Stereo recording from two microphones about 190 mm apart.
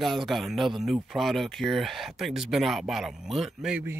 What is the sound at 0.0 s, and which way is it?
Speech, centre (ahead or behind).